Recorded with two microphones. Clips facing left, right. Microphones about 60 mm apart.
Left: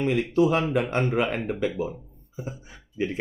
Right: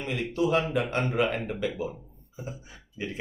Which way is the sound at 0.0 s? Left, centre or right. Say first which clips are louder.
Left 6 dB; left.